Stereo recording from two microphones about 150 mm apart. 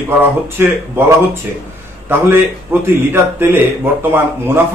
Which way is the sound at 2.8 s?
15° right (ahead or behind).